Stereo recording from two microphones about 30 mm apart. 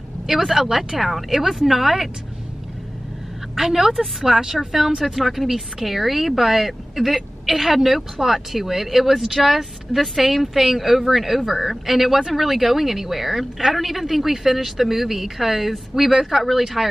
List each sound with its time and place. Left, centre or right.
0.3 s a woman's voice: centre
3.5 s a woman's voice: centre